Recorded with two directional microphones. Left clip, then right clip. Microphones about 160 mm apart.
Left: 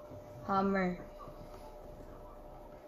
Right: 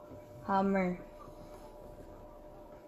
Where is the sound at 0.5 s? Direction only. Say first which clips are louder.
Right 1 dB; 40° right (ahead or behind).